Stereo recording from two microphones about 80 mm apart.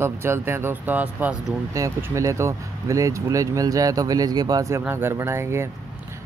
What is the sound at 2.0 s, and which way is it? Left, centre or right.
Speech, right.